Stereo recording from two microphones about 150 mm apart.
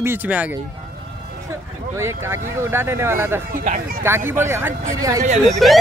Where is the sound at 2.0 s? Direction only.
15° right (ahead or behind).